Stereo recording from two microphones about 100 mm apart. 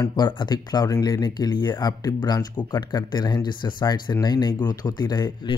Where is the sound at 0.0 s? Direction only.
45° left (ahead or behind).